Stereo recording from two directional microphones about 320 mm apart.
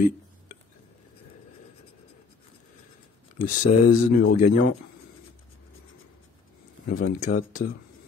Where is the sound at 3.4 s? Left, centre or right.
Left.